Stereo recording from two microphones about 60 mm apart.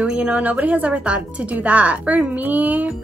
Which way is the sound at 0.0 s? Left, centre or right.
Centre.